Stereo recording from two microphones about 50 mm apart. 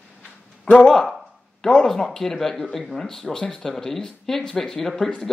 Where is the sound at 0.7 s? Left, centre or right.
Centre.